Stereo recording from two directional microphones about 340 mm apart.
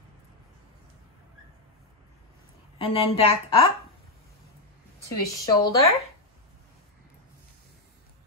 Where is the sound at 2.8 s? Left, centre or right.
Centre.